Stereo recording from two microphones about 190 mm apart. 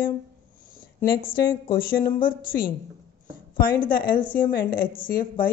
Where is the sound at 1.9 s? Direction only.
45° left (ahead or behind).